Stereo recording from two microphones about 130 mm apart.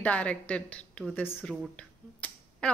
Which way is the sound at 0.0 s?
10° left (ahead or behind).